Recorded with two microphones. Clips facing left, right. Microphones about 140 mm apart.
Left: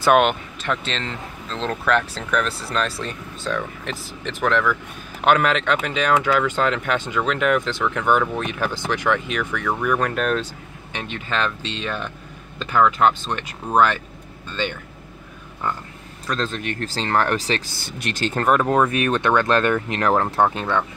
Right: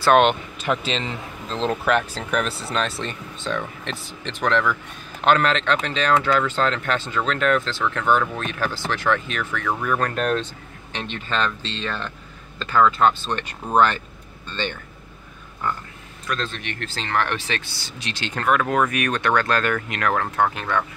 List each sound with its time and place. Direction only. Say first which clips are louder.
0.0 s speech: even; 5° left (ahead or behind)
0.7 s speech: right 2 dB; 5° right (ahead or behind)
16.3 s speech: left 3 dB; 35° left (ahead or behind)
18.3 s speech: left 2 dB; 35° left (ahead or behind)
20.4 s speech: left 2 dB; 20° left (ahead or behind)